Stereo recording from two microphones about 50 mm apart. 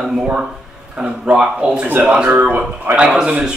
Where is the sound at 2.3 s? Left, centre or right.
Right.